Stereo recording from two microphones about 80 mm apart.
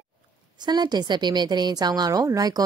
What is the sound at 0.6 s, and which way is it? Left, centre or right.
A woman's voice, right.